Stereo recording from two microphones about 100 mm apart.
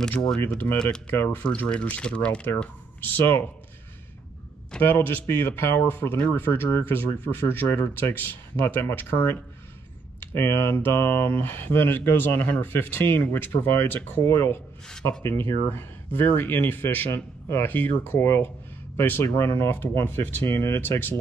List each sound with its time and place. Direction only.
0.5 s speech: 20° left (ahead or behind)
1.5 s speech: 10° left (ahead or behind)
4.8 s speech: 20° left (ahead or behind)